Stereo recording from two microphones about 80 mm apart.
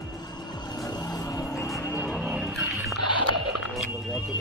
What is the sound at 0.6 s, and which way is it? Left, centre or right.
Music, left.